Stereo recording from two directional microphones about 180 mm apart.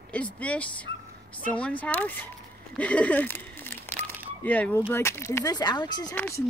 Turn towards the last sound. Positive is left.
turn(degrees=15)  # may be behind; listen again after turning